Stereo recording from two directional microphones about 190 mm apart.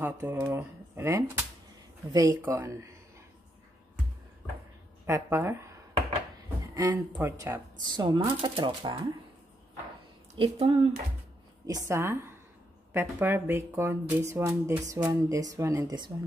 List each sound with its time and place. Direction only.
0.0 s speech: 10° right (ahead or behind)
5.0 s speech: 15° right (ahead or behind)
6.7 s speech: 20° right (ahead or behind)
7.8 s speech: 25° right (ahead or behind)
10.3 s speech: 25° right (ahead or behind)
11.6 s a woman's voice: 20° right (ahead or behind)